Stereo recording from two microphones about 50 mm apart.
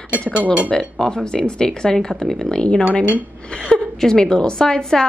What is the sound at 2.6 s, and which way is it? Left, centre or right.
Speech, left.